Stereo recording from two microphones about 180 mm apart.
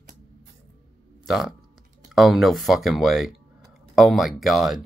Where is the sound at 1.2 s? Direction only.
Centre (ahead or behind).